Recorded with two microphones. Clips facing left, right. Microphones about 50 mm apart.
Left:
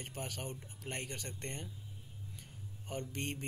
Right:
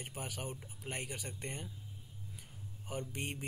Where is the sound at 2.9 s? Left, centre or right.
Centre.